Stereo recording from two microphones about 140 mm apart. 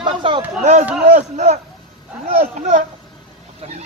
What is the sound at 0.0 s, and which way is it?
Speech, 35° right (ahead or behind).